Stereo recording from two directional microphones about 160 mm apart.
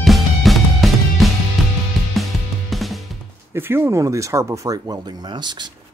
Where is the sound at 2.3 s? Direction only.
Centre (ahead or behind).